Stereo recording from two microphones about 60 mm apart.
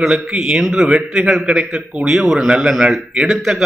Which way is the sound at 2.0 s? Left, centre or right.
Centre.